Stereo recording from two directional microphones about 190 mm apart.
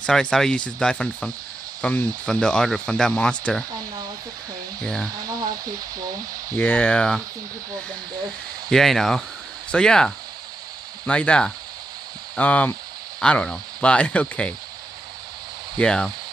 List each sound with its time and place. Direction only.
0.0 s speech: 5° left (ahead or behind)
4.8 s speech: 5° left (ahead or behind)
5.5 s a sound: 20° right (ahead or behind)
6.5 s speech: 10° left (ahead or behind)
8.6 s speech: centre (ahead or behind)
15.8 s speech: 5° left (ahead or behind)